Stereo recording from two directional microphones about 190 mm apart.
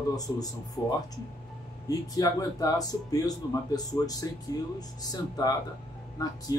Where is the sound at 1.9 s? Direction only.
20° left (ahead or behind).